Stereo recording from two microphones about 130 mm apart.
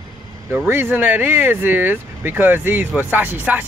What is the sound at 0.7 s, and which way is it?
Speech, 15° right (ahead or behind).